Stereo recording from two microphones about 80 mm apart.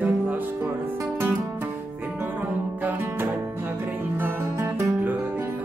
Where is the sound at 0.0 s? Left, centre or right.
Right.